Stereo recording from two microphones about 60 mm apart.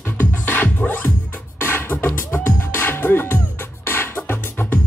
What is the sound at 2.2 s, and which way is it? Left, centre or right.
Music, left.